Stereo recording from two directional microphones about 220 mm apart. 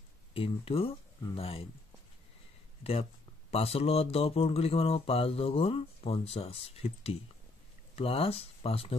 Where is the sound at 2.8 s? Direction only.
30° left (ahead or behind).